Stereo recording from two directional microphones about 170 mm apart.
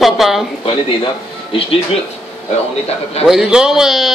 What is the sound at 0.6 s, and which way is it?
Speech, 30° left (ahead or behind).